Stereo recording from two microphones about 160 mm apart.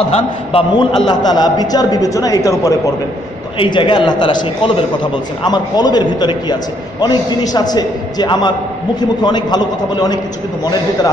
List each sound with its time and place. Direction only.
0.0 s a man's voice: 35° left (ahead or behind)
3.5 s a man's voice: 30° left (ahead or behind)